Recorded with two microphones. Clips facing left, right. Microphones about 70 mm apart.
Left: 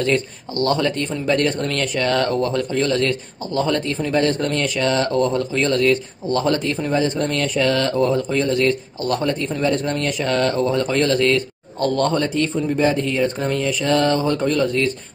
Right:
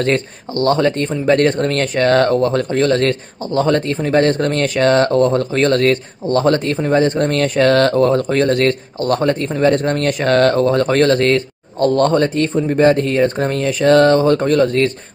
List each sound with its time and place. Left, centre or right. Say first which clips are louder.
0.0 s speech: right 3 dB; right